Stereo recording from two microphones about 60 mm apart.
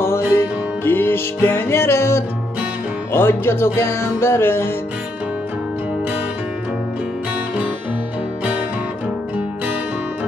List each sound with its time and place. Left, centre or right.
0.8 s music: left